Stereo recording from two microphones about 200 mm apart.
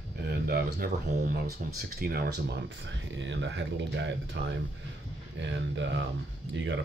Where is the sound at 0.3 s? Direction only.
50° right (ahead or behind).